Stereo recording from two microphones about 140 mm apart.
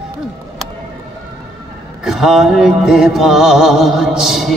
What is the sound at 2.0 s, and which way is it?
Mantra, 5° right (ahead or behind).